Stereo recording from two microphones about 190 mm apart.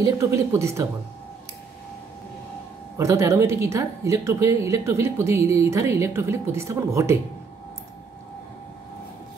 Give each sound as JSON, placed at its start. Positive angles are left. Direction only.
{"t": 0.0, "sound": "speech", "side_deg": -15}
{"t": 3.0, "sound": "speech", "side_deg": -15}